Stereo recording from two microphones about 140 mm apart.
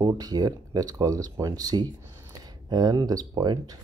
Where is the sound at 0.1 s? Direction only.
25° right (ahead or behind).